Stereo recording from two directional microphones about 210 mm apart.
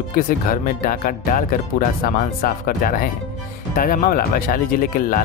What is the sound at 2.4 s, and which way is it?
Speech, 40° left (ahead or behind).